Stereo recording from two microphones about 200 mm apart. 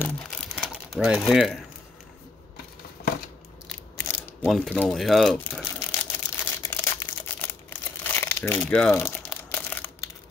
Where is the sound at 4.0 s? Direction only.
Centre (ahead or behind).